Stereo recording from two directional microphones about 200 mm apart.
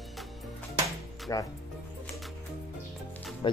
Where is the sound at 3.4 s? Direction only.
25° left (ahead or behind).